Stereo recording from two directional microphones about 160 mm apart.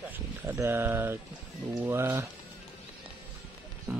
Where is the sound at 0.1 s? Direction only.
10° right (ahead or behind).